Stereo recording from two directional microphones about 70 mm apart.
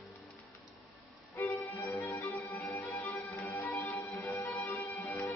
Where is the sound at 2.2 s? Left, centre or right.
Left.